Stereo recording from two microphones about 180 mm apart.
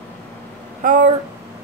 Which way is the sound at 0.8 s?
45° right (ahead or behind).